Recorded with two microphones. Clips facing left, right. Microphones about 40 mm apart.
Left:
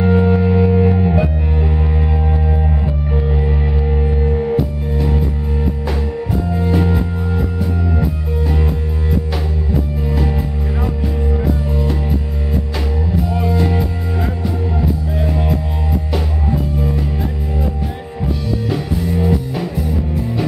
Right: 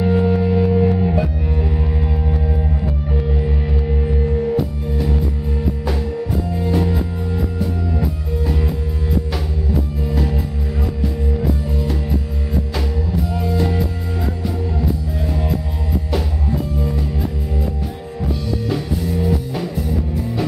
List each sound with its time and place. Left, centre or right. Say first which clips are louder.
0.0 s music: left 2 dB; centre
6.5 s music: left 3 dB; centre
10.0 s music: left 2 dB; centre
18.2 s music: left 2 dB; centre